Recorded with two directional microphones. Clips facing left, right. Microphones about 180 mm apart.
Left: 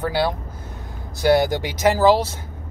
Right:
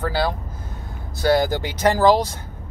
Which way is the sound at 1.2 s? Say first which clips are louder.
Left 1 dB; 15° left (ahead or behind).